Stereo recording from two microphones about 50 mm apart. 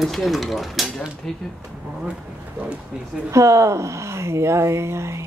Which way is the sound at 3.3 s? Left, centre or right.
Right.